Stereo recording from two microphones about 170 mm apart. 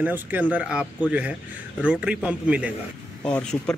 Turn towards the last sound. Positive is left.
turn(degrees=5)  # may be behind; listen again after turning